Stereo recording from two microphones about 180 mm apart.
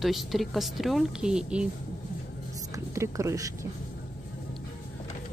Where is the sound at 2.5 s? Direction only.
20° right (ahead or behind).